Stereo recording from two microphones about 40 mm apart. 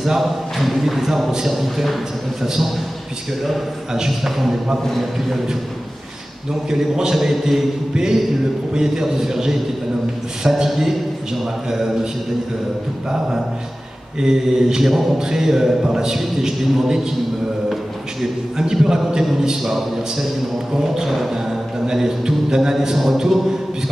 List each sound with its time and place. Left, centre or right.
0.0 s a man's voice: centre
3.9 s a man's voice: centre
4.8 s a man's voice: centre
6.5 s a man's voice: centre
14.2 s a man's voice: centre
18.2 s a man's voice: centre
19.6 s a man's voice: centre